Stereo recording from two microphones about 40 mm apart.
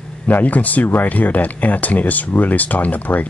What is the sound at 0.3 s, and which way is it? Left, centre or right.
Speech, left.